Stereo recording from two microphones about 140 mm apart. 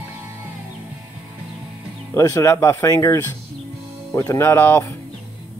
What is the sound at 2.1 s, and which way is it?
Speech, 20° left (ahead or behind).